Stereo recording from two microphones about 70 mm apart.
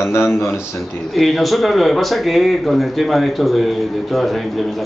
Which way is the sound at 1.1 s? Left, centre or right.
Centre.